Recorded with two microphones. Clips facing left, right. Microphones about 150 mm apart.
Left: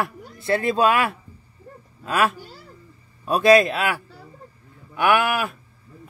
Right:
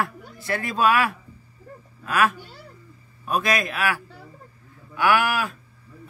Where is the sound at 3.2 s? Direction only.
30° left (ahead or behind).